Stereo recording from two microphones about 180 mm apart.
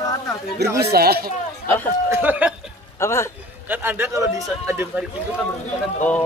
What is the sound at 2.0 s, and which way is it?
Speech, 10° right (ahead or behind).